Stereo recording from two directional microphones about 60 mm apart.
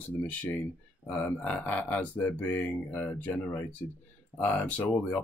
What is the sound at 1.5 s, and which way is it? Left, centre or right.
Speech, left.